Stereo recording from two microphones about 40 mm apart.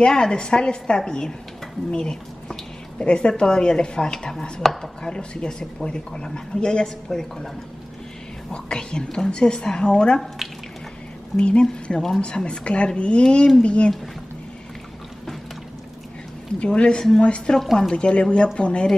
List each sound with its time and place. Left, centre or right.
0.0 s a woman's voice: centre
11.3 s a woman's voice: left
11.9 s a woman's voice: centre
12.4 s a woman's voice: left
16.5 s a woman's voice: left